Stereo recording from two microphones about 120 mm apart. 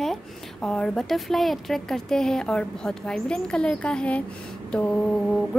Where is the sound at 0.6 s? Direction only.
5° left (ahead or behind).